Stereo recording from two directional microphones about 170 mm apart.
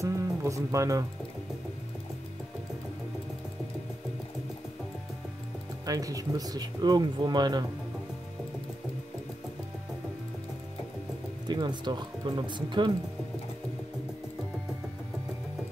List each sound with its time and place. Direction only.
0.0 s music: 20° right (ahead or behind)
5.9 s speech: 20° right (ahead or behind)
11.4 s speech: 25° right (ahead or behind)